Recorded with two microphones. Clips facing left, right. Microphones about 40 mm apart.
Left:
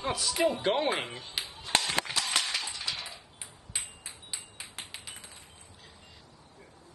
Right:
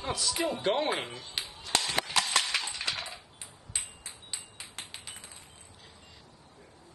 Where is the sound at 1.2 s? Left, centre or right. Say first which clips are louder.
Left 1 dB; centre.